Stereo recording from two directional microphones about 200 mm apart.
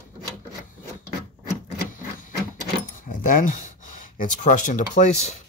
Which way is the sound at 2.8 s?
40° left (ahead or behind).